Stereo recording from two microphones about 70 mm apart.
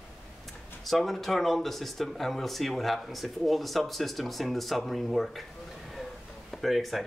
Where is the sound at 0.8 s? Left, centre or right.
Centre.